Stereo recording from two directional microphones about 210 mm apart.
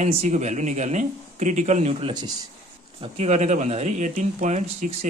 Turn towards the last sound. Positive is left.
turn(degrees=-35)  # may be behind; listen again after turning